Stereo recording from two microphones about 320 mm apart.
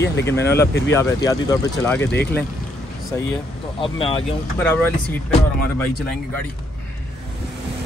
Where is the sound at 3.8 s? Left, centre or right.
Centre.